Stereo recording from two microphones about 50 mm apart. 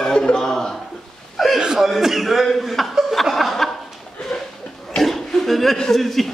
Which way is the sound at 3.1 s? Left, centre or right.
Centre.